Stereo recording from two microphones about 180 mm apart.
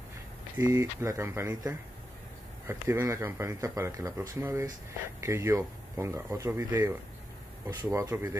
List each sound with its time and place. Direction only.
0.6 s speech: 15° right (ahead or behind)